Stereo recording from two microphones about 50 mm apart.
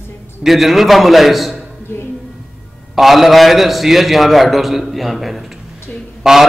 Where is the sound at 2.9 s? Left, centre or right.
Centre.